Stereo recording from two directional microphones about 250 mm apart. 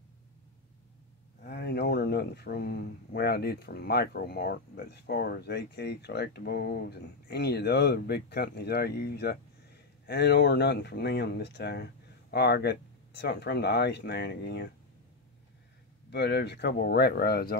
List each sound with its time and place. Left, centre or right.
1.4 s speech: left
16.1 s speech: left